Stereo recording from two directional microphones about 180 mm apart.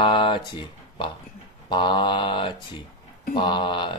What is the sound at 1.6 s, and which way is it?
Speech, 25° left (ahead or behind).